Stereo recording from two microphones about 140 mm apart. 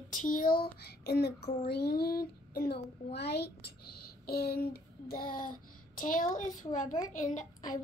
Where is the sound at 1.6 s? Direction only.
90° left.